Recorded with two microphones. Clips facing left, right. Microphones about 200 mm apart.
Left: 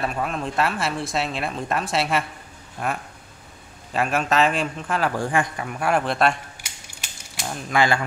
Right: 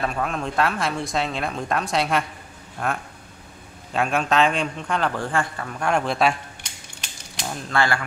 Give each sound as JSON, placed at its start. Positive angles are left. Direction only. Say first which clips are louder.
{"t": 0.0, "sound": "a man's voice", "louder": "even", "side_deg": 5}
{"t": 7.7, "sound": "a man's voice", "louder": "left 2 dB", "side_deg": 15}